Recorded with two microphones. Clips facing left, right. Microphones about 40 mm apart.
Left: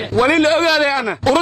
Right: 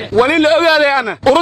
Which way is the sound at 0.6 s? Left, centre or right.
Centre.